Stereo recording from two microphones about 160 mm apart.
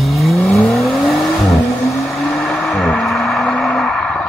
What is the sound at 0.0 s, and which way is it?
Vehicle, centre (ahead or behind).